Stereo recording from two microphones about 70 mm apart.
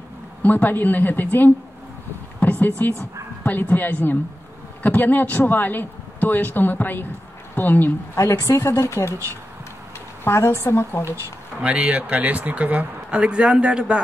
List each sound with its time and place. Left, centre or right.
0.4 s a man's voice: left
2.8 s a man's voice: left
8.2 s speech: left
11.6 s speech: centre